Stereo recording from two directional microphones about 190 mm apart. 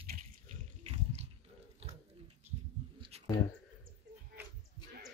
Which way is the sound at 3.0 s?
35° right (ahead or behind).